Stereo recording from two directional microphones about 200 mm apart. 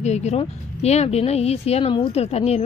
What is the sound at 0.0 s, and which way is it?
Speech, 35° left (ahead or behind).